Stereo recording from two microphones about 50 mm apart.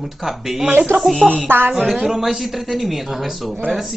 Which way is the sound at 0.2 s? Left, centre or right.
Centre.